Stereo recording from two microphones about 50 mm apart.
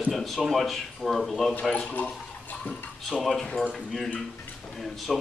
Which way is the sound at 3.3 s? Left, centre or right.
Centre.